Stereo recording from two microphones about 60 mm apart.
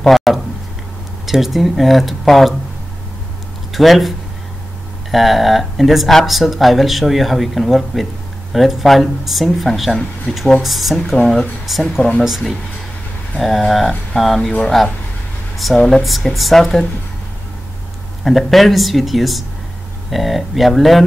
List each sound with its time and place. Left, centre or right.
0.0 s a sound: centre
1.2 s speech: centre
3.7 s speech: centre
5.1 s speech: centre
11.1 s speech: centre
11.6 s speech: centre
18.2 s speech: centre